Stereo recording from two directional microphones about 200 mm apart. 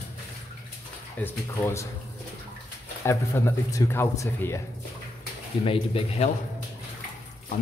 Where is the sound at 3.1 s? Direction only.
15° left (ahead or behind).